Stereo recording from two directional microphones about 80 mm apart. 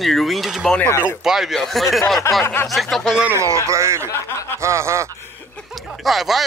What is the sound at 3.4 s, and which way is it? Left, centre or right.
Speech, right.